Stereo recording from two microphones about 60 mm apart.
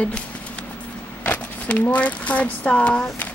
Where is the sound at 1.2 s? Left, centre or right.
Left.